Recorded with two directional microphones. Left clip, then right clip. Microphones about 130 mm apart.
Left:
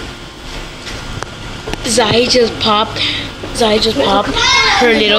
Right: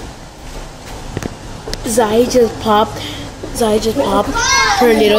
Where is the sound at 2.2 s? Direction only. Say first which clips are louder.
Left 1 dB; 65° right (ahead or behind).